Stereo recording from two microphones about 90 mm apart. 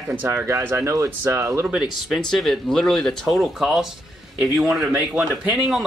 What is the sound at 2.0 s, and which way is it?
Speech, centre (ahead or behind).